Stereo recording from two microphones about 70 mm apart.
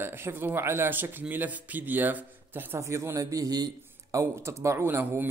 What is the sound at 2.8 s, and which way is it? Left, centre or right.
A man's voice, right.